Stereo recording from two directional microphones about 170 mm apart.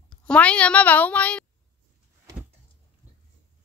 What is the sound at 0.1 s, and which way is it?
A woman's voice, 5° left (ahead or behind).